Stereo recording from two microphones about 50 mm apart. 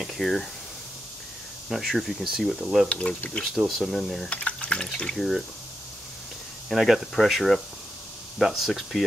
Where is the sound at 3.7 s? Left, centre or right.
Centre.